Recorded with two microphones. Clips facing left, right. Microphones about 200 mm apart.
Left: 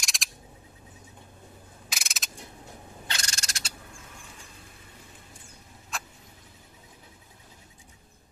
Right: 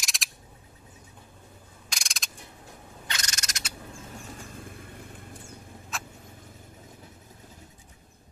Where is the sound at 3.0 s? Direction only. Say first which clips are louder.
Even; 30° left (ahead or behind).